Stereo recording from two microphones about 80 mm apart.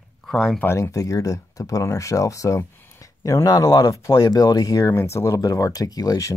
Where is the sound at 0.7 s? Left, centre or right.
Left.